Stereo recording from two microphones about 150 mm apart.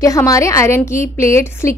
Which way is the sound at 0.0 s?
20° left (ahead or behind).